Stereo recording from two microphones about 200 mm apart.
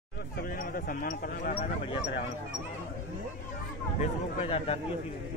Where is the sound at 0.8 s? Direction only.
45° left (ahead or behind).